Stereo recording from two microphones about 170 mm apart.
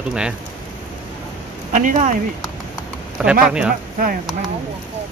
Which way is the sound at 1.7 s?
50° right (ahead or behind).